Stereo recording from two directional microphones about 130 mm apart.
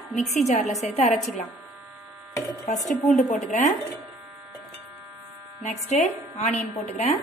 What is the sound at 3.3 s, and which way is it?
Speech, 65° left (ahead or behind).